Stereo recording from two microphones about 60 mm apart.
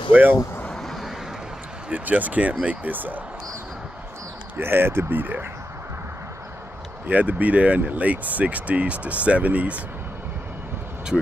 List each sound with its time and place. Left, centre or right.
0.1 s speech: right
0.7 s vehicle: centre
1.9 s speech: right
4.6 s speech: right
7.1 s speech: right